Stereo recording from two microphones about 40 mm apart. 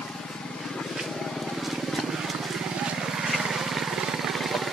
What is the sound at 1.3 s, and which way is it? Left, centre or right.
Vehicle, centre.